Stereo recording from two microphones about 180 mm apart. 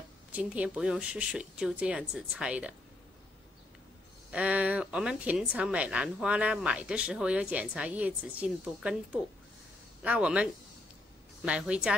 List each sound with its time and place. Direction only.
0.3 s a woman's voice: 10° right (ahead or behind)
4.3 s a woman's voice: 5° right (ahead or behind)